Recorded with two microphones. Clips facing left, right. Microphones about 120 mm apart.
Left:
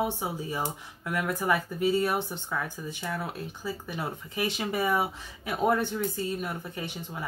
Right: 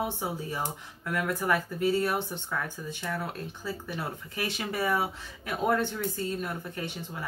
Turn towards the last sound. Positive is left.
turn(degrees=15)  # may be behind; listen again after turning